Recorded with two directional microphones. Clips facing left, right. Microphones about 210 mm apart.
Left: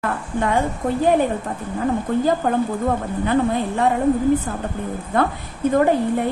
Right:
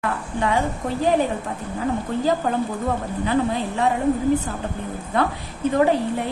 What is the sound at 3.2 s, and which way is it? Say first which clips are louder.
Speech: left 2 dB; 50° left (ahead or behind).